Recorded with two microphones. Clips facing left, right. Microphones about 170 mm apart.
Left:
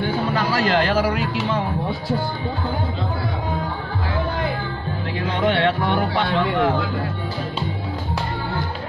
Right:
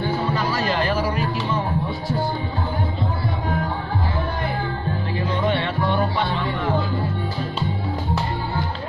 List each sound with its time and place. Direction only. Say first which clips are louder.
0.3 s music: left 3 dB; 80° left
5.3 s music: left 4 dB; 90° left